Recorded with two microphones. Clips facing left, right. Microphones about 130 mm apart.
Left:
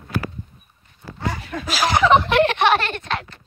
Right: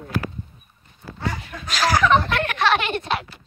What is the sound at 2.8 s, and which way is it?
Speech, 10° right (ahead or behind).